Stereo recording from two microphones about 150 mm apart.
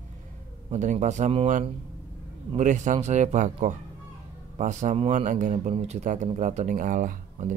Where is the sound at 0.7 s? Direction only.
55° right (ahead or behind).